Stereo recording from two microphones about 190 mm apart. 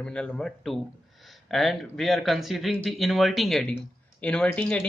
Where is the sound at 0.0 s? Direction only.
5° left (ahead or behind).